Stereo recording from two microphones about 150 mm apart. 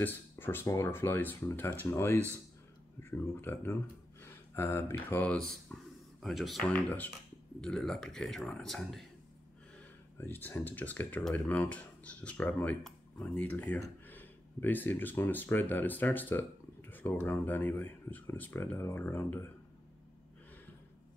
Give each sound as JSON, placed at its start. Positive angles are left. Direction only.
{"t": 0.0, "sound": "speech", "side_deg": 15}
{"t": 4.2, "sound": "a sound", "side_deg": 15}
{"t": 5.1, "sound": "speech", "side_deg": 10}
{"t": 6.7, "sound": "speech", "side_deg": 10}
{"t": 10.1, "sound": "speech", "side_deg": 15}